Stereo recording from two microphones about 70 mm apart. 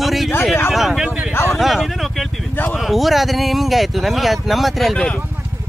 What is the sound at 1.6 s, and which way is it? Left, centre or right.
Speech, centre.